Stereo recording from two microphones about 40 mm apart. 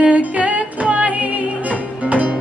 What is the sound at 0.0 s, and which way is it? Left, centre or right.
Music, right.